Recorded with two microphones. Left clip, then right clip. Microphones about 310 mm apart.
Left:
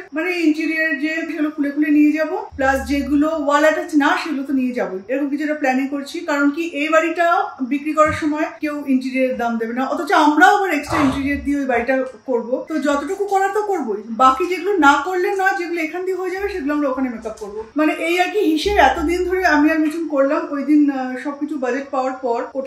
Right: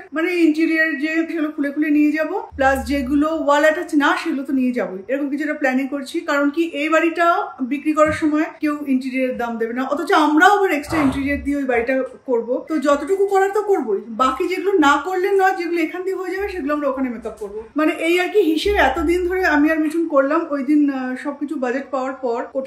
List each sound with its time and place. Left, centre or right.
0.2 s a man's voice: centre
12.8 s a man's voice: centre
17.7 s a man's voice: centre